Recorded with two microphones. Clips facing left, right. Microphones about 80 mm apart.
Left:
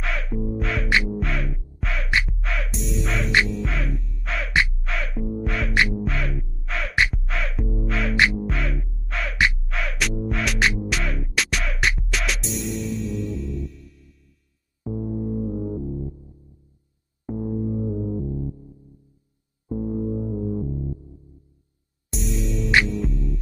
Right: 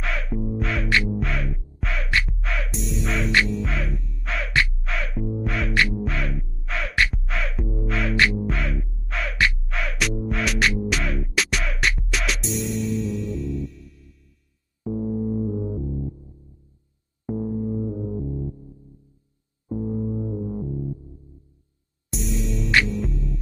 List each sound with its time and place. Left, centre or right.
0.0 s music: centre
0.8 s music: centre
1.1 s music: centre
4.5 s music: centre
4.7 s music: centre
5.9 s caw: centre
7.2 s music: centre
22.1 s music: centre